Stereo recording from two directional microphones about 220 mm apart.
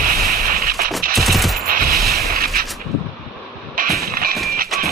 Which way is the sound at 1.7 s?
40° right (ahead or behind).